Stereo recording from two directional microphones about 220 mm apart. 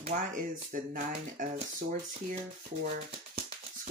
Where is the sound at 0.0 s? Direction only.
35° right (ahead or behind).